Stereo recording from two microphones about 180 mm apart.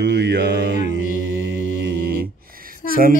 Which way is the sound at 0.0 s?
70° right (ahead or behind).